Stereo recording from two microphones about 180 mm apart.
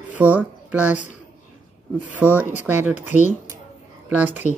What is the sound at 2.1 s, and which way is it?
Speech, 10° right (ahead or behind).